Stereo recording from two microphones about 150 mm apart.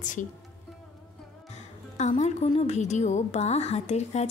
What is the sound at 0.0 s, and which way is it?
Speech, 60° left (ahead or behind).